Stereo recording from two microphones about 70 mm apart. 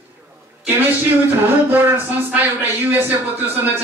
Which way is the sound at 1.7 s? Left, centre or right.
Right.